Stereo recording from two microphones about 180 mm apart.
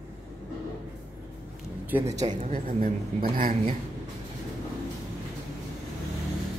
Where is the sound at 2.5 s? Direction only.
50° right (ahead or behind).